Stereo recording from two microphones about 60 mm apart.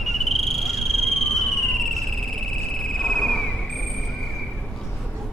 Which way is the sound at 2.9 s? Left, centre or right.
Centre.